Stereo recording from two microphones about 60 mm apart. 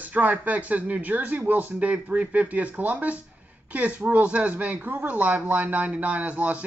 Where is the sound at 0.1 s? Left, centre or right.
Right.